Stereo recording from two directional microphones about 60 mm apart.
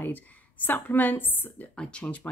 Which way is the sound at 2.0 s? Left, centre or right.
Left.